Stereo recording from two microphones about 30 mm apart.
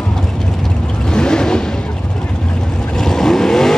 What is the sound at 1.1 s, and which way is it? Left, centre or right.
Vehicle, left.